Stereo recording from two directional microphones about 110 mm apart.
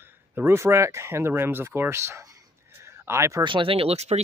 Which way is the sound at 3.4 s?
50° right (ahead or behind).